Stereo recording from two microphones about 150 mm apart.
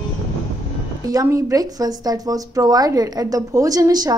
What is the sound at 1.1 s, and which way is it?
Speech, 20° right (ahead or behind).